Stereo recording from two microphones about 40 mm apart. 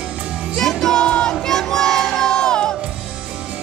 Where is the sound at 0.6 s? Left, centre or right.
Centre.